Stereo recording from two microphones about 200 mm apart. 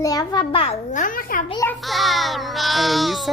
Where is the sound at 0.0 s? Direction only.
20° left (ahead or behind); by 1.4 s 45° left (ahead or behind).